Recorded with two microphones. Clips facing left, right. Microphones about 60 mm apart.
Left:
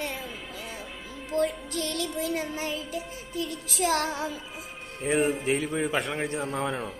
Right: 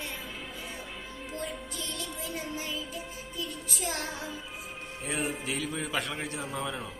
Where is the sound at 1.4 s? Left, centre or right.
Left.